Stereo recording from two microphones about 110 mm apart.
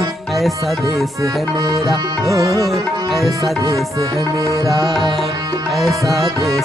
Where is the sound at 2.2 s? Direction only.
30° right (ahead or behind).